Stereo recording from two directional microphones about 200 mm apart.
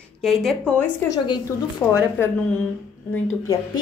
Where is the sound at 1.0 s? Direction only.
20° left (ahead or behind).